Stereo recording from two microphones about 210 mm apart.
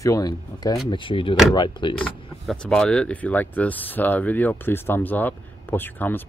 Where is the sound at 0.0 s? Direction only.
15° left (ahead or behind).